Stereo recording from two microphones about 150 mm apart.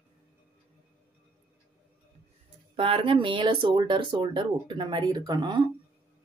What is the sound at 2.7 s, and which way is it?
A woman's voice, 35° right (ahead or behind).